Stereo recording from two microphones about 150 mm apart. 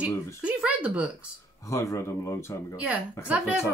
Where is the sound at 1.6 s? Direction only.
20° left (ahead or behind).